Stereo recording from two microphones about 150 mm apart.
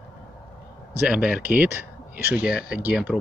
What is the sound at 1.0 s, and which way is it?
Speech, 10° right (ahead or behind).